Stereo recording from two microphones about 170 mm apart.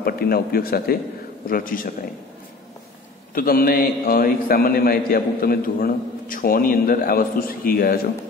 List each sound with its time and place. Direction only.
0.0 s a man's voice: 60° left (ahead or behind)
3.3 s a man's voice: 60° left (ahead or behind)